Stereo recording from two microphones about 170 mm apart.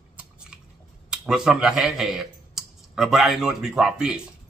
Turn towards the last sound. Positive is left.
turn(degrees=-5)  # may be behind; listen again after turning